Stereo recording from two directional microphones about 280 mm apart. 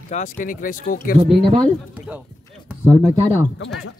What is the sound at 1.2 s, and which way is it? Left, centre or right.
Speech, right.